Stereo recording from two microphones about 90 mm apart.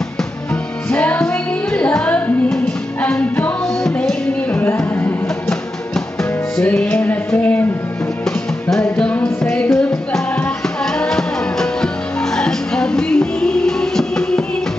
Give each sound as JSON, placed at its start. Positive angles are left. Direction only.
{"t": 0.9, "sound": "music", "side_deg": 15}
{"t": 3.8, "sound": "music", "side_deg": 5}
{"t": 6.6, "sound": "music", "side_deg": 10}
{"t": 7.2, "sound": "a sound", "side_deg": 15}
{"t": 8.9, "sound": "music", "side_deg": 10}
{"t": 12.4, "sound": "music", "side_deg": 10}